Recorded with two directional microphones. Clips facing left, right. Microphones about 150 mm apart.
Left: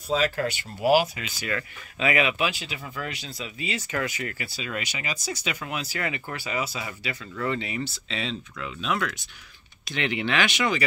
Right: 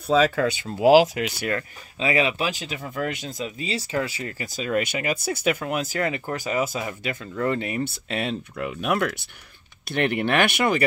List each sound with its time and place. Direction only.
0.7 s speech: 90° right; by 1.5 s 65° right (ahead or behind)
2.0 s speech: 30° right (ahead or behind)
4.5 s speech: 45° right (ahead or behind)